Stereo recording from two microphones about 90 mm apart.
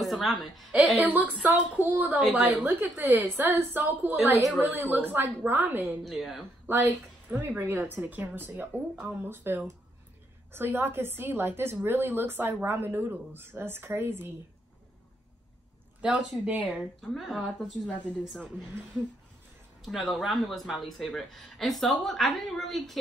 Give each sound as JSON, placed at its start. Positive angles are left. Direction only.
{"t": 0.0, "sound": "a woman's voice", "side_deg": 0}
{"t": 1.0, "sound": "speech", "side_deg": -20}
{"t": 6.0, "sound": "speech", "side_deg": 0}
{"t": 6.7, "sound": "a woman's voice", "side_deg": -20}
{"t": 16.0, "sound": "speech", "side_deg": -10}
{"t": 17.1, "sound": "speech", "side_deg": 0}
{"t": 19.8, "sound": "speech", "side_deg": 0}